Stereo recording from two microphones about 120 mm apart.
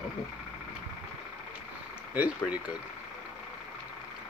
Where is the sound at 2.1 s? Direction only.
10° right (ahead or behind).